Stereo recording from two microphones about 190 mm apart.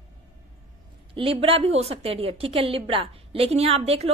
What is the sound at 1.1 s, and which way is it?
A woman's voice, 30° right (ahead or behind).